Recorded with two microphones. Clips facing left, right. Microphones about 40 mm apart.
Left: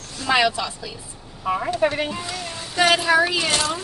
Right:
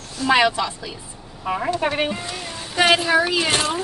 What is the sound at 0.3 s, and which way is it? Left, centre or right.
Speech, centre.